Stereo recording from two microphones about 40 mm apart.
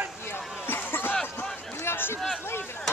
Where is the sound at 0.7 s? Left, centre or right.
Left.